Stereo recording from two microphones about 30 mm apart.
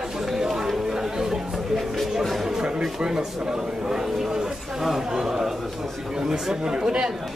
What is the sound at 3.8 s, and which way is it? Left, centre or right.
Speech, right.